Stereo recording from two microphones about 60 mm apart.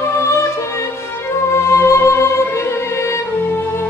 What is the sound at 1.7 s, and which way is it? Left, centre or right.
Music, left.